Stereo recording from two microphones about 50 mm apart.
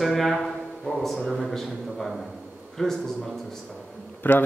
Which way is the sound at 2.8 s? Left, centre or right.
Centre.